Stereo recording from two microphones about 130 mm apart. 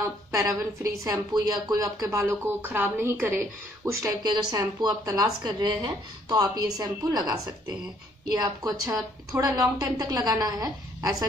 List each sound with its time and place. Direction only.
0.3 s a woman's voice: 25° right (ahead or behind)